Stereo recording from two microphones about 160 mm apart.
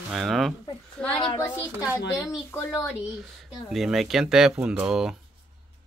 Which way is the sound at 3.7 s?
Centre (ahead or behind).